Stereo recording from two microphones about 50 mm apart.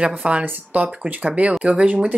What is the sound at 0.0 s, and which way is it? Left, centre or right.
Speech, right.